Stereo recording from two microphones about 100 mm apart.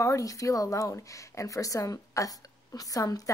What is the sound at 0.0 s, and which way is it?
Speech, 30° left (ahead or behind).